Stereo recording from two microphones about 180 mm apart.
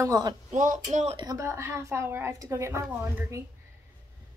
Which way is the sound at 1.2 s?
20° right (ahead or behind).